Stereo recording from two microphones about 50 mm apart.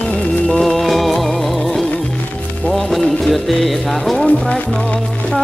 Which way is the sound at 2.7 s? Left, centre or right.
Centre.